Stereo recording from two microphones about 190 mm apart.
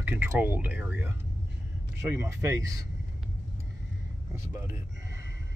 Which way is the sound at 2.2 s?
15° right (ahead or behind).